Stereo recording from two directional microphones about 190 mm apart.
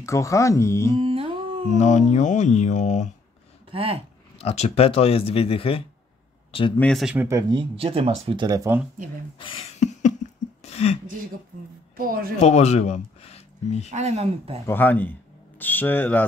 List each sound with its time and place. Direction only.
0.0 s speech: 15° left (ahead or behind)
1.0 s humming: 30° right (ahead or behind)
1.7 s speech: 40° left (ahead or behind)
3.7 s speech: 30° right (ahead or behind)
4.4 s speech: 35° left (ahead or behind)
6.8 s speech: centre (ahead or behind)
7.2 s speech: 15° right (ahead or behind)
7.7 s speech: 30° right (ahead or behind); by 8.8 s 15° right (ahead or behind)
9.8 s a sound: 35° left (ahead or behind)
12.0 s speech: 50° right (ahead or behind)
12.4 s speech: 35° left (ahead or behind)
13.8 s speech: 35° right (ahead or behind)
14.7 s speech: 10° left (ahead or behind)